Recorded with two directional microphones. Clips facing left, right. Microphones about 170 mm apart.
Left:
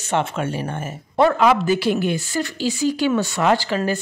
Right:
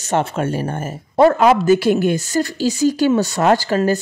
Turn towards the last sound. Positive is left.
turn(degrees=-40)  # may be behind; listen again after turning